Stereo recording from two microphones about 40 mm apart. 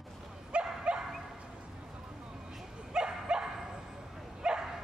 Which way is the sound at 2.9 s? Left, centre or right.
Right.